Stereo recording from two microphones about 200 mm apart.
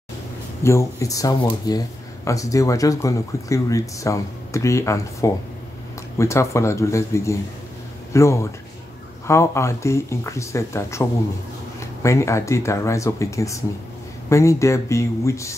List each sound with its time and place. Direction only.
0.7 s speech: 15° left (ahead or behind)